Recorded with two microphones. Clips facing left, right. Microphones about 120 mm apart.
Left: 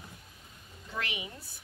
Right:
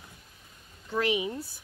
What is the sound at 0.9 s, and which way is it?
Speech, 35° right (ahead or behind).